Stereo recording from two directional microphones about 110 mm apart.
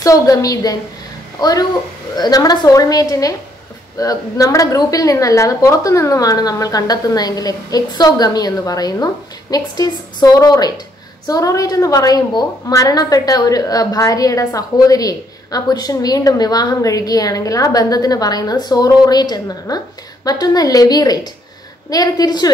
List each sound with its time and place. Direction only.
0.0 s a woman's voice: 30° left (ahead or behind)